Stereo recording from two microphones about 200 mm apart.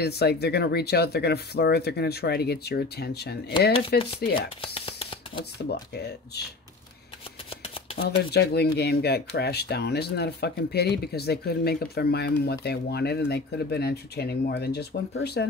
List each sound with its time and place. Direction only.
0.0 s speech: 55° left (ahead or behind)
4.7 s a sound: 25° left (ahead or behind)
5.4 s speech: 55° left (ahead or behind)
8.3 s speech: 55° left (ahead or behind)